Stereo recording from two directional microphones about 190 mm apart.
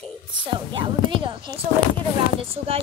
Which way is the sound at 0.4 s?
25° right (ahead or behind).